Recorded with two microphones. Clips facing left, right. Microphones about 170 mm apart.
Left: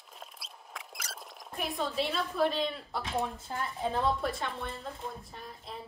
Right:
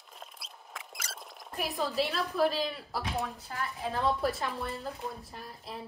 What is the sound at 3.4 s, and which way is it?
Speech, 25° left (ahead or behind).